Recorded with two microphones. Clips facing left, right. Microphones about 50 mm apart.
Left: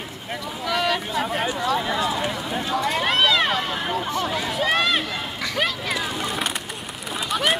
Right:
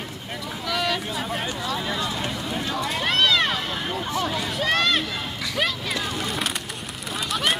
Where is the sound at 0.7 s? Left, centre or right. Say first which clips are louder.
Left 3 dB; centre.